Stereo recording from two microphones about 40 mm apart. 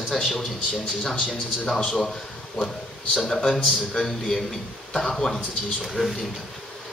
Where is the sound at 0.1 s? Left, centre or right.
Centre.